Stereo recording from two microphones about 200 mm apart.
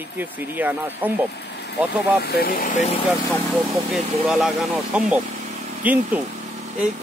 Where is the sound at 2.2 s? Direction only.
50° left (ahead or behind); by 3.0 s 30° left (ahead or behind).